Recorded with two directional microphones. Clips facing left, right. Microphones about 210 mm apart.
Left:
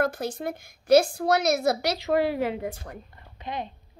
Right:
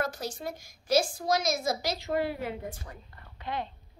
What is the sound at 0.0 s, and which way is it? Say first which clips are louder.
A woman's voice: left 6 dB; 55° left (ahead or behind).